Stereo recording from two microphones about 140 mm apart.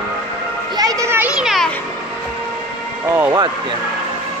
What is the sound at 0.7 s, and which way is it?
Children playing, 25° right (ahead or behind).